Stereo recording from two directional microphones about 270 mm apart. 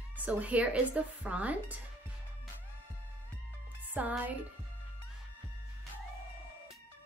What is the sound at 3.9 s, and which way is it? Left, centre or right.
Speech, centre.